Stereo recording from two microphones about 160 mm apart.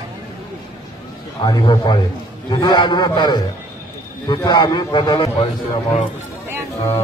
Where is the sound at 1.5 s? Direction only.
25° left (ahead or behind).